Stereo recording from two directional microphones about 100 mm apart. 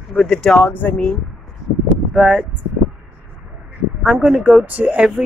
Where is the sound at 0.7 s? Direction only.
20° left (ahead or behind).